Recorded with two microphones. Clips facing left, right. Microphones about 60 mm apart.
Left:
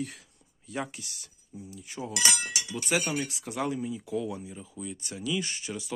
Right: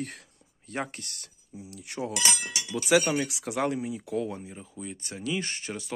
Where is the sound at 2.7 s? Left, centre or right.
Right.